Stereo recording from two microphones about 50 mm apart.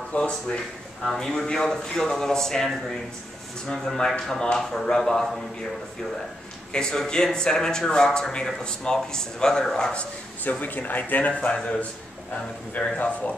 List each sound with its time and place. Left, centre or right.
0.1 s speech: left
1.0 s speech: centre
6.7 s speech: centre
10.4 s speech: left
11.5 s speech: centre
12.7 s speech: left